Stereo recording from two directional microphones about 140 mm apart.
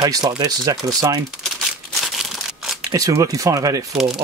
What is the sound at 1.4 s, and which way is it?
Crumpling, centre (ahead or behind).